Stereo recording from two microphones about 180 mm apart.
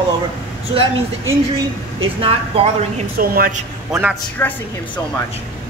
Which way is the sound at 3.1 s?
55° right (ahead or behind).